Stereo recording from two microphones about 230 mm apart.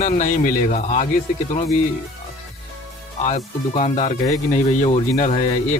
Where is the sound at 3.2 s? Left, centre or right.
Left.